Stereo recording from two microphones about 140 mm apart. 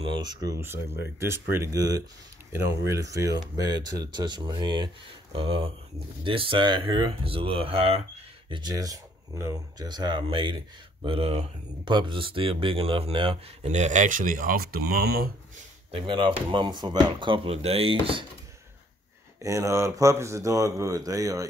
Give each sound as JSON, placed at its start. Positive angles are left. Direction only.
{"t": 0.0, "sound": "speech", "side_deg": -30}
{"t": 15.9, "sound": "speech", "side_deg": -40}
{"t": 19.4, "sound": "speech", "side_deg": -20}